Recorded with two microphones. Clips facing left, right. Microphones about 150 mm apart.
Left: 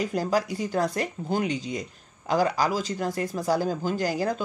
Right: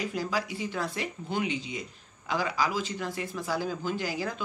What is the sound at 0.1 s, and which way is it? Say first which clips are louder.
Speech: left 6 dB; 45° left (ahead or behind).